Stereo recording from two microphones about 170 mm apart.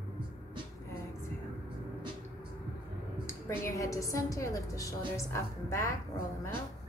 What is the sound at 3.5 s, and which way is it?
A woman's voice, 15° left (ahead or behind).